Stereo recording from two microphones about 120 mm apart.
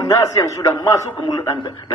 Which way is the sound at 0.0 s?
25° left (ahead or behind).